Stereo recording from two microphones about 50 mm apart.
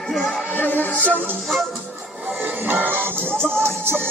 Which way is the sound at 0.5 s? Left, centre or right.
Left.